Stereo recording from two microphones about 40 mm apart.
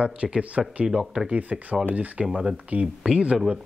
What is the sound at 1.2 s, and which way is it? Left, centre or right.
A man's voice, right.